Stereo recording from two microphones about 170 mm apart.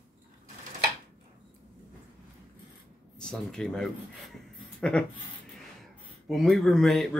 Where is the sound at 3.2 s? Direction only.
5° left (ahead or behind).